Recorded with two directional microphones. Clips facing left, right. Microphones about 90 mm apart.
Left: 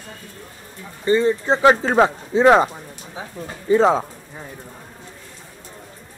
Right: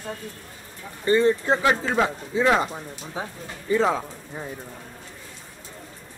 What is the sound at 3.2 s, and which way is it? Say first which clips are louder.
Speech: right 2 dB; 35° right (ahead or behind).